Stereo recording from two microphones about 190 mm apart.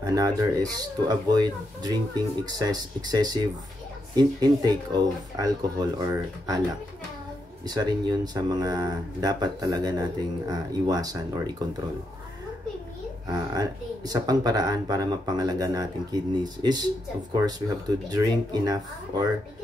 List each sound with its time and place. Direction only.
0.0 s speech: 20° right (ahead or behind)
7.6 s speech: 20° right (ahead or behind)
13.3 s speech: 20° right (ahead or behind)
17.3 s speech: 20° right (ahead or behind)